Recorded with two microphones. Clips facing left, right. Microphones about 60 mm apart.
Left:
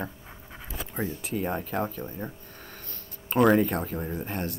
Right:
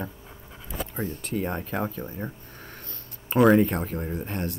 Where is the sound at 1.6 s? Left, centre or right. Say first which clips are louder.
Even; centre.